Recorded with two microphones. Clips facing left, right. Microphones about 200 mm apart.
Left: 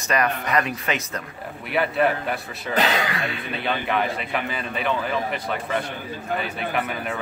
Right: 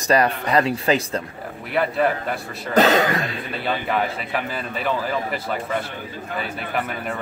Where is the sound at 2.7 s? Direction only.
45° right (ahead or behind).